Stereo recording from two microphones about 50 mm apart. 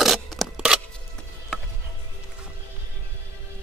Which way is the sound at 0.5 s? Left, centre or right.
Centre.